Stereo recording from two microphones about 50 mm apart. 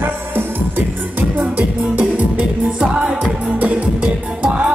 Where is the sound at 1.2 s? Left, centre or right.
Right.